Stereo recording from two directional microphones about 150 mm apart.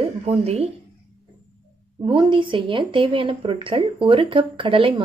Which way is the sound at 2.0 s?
35° right (ahead or behind).